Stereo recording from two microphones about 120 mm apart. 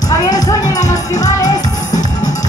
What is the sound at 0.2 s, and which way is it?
Music, 30° left (ahead or behind).